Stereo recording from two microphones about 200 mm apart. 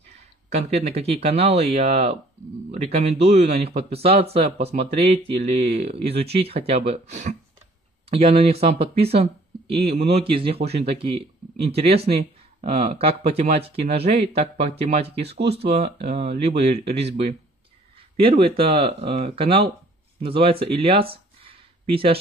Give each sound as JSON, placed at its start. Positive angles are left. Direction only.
{"t": 0.7, "sound": "speech", "side_deg": -30}
{"t": 15.2, "sound": "speech", "side_deg": -55}
{"t": 16.1, "sound": "speech", "side_deg": -30}
{"t": 21.4, "sound": "a sound", "side_deg": -25}